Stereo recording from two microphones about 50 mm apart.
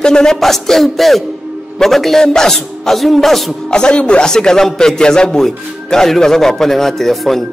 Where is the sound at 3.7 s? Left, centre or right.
Centre.